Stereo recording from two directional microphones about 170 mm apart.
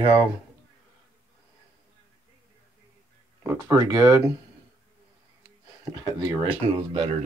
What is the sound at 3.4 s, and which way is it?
Speech, 15° right (ahead or behind).